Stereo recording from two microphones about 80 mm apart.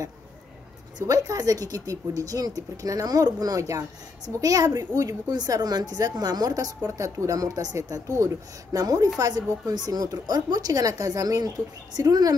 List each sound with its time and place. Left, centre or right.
0.9 s speech: right
6.9 s speech: right